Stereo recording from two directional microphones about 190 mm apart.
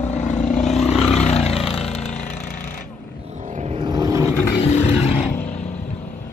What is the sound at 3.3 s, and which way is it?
Vehicle, 40° right (ahead or behind).